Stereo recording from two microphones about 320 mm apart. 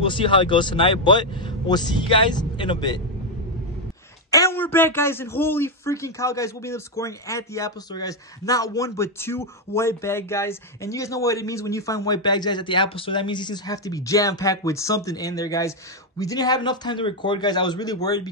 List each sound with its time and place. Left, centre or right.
0.0 s a man's voice: centre
4.3 s a man's voice: centre